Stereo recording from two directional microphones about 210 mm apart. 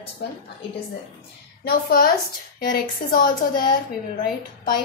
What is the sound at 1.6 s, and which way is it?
A woman's voice, 45° left (ahead or behind).